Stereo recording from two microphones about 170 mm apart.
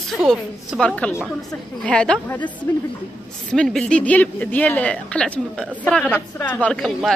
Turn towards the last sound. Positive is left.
turn(degrees=0)  # may be behind; listen again after turning